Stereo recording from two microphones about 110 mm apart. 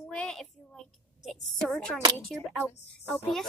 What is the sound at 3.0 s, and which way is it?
Speech, 25° left (ahead or behind).